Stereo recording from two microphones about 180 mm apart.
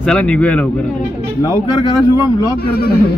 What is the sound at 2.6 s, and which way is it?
Speech, 60° left (ahead or behind).